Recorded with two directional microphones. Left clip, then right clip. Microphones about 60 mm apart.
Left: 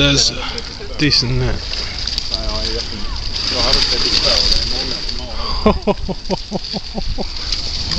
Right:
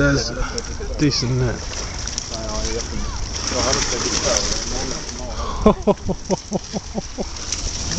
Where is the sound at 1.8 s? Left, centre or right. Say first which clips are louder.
Left 6 dB; centre.